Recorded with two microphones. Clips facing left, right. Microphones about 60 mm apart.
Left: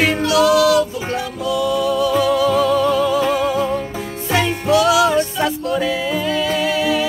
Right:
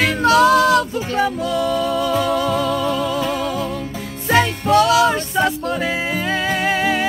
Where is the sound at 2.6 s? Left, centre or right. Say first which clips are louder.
Left 4 dB; left.